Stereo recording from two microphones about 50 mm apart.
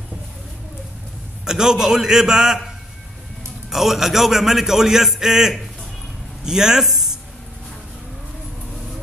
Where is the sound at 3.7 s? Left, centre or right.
Centre.